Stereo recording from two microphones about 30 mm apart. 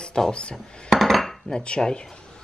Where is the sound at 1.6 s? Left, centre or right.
Left.